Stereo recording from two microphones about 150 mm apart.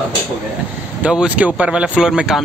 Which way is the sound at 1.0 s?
5° right (ahead or behind).